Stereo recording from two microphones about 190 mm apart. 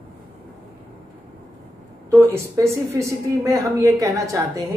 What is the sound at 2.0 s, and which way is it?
A woman's voice, 15° right (ahead or behind).